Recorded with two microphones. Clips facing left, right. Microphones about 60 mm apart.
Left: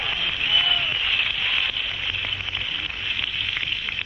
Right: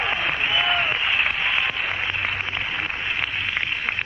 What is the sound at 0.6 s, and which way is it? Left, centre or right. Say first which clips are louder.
Applause: right 1 dB; right.